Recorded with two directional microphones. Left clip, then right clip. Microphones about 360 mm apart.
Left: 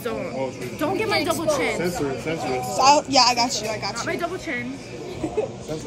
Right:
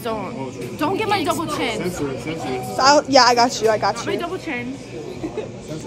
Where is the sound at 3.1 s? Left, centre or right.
Centre.